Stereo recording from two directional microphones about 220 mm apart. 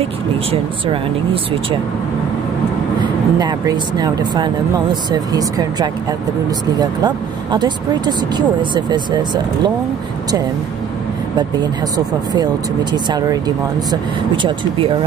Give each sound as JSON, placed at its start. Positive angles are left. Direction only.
{"t": 3.0, "sound": "speech", "side_deg": -20}
{"t": 12.9, "sound": "speech", "side_deg": -20}